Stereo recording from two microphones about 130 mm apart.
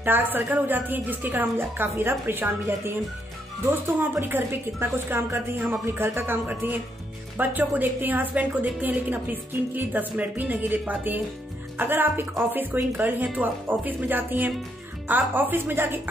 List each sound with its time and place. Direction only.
0.0 s a woman's voice: 15° right (ahead or behind)